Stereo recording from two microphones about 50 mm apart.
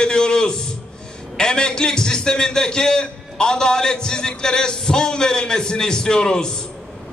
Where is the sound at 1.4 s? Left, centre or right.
Centre.